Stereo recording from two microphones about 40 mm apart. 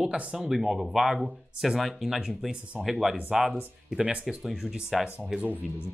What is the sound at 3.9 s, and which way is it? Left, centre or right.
Speech, centre.